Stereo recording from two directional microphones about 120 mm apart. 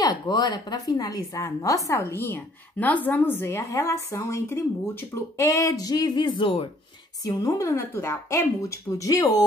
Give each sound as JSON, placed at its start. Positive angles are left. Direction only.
{"t": 0.0, "sound": "a woman's voice", "side_deg": 35}
{"t": 7.2, "sound": "a woman's voice", "side_deg": 30}